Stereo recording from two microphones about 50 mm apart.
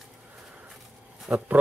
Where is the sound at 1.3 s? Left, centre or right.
Right.